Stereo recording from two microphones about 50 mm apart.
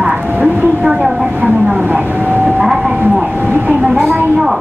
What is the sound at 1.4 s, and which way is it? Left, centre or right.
Speech, right.